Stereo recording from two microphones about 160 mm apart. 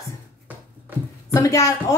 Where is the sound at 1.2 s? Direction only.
20° left (ahead or behind).